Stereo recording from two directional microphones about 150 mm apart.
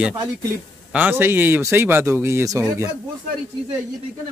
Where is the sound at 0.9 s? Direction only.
15° right (ahead or behind).